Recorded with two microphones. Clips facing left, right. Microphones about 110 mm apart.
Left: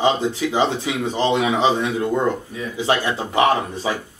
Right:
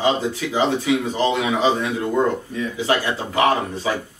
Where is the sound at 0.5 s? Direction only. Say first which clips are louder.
Right 5 dB; 25° left (ahead or behind).